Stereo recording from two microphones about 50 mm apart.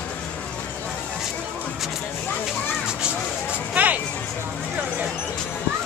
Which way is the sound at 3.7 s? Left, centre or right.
Right.